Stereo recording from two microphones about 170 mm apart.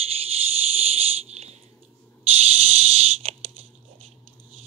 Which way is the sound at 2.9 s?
35° right (ahead or behind).